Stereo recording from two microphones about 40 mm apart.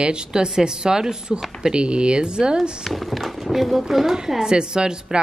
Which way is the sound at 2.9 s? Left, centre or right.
Centre.